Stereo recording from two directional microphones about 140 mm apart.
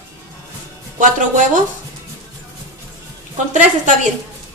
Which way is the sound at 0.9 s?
65° right (ahead or behind).